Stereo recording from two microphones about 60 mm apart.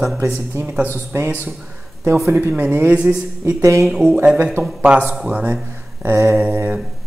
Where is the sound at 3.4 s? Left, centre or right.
Right.